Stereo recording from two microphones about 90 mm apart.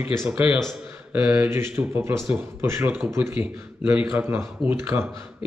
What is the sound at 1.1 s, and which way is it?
Speech, 15° right (ahead or behind).